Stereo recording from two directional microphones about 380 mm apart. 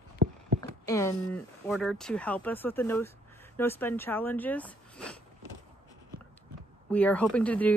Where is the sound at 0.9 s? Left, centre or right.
Centre.